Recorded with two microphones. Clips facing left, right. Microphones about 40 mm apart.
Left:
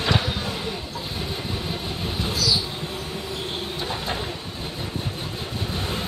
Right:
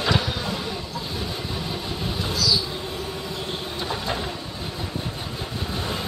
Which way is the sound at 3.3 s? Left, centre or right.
Centre.